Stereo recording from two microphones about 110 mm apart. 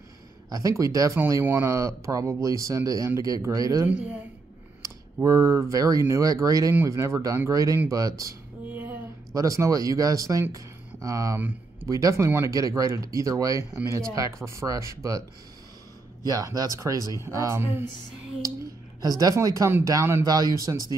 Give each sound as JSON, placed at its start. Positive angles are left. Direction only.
{"t": 0.5, "sound": "speech", "side_deg": -30}
{"t": 3.8, "sound": "speech", "side_deg": -15}
{"t": 4.8, "sound": "speech", "side_deg": -30}
{"t": 8.6, "sound": "a sound", "side_deg": -15}
{"t": 9.3, "sound": "speech", "side_deg": -30}
{"t": 11.3, "sound": "speech", "side_deg": -15}
{"t": 11.9, "sound": "speech", "side_deg": -30}
{"t": 16.3, "sound": "speech", "side_deg": -35}
{"t": 18.9, "sound": "speech", "side_deg": -35}
{"t": 20.2, "sound": "speech", "side_deg": -35}